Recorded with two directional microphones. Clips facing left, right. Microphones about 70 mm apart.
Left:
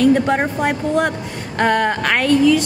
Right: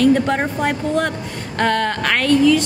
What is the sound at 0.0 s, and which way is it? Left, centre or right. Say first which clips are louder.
Speech: left 1 dB; centre.